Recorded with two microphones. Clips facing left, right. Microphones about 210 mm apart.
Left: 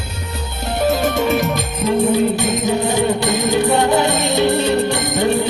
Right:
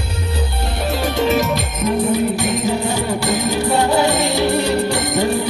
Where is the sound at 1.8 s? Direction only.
25° left (ahead or behind).